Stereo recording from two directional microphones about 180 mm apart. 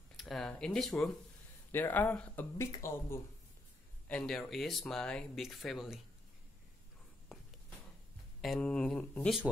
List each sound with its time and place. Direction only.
0.1 s speech: centre (ahead or behind)
4.1 s speech: 5° left (ahead or behind)
8.4 s speech: 5° left (ahead or behind)